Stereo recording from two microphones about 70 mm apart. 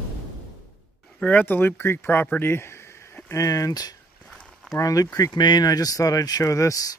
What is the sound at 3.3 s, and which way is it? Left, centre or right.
Speech, left.